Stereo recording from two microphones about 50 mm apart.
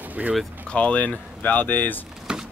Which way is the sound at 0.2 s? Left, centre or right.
Right.